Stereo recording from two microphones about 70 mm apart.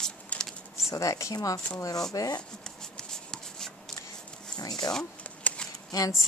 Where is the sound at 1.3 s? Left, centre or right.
Left.